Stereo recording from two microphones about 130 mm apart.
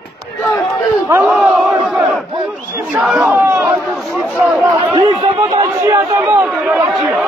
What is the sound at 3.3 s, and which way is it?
Chatter, 15° right (ahead or behind).